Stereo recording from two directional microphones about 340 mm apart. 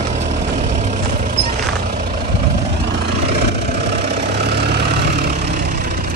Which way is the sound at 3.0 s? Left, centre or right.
Right.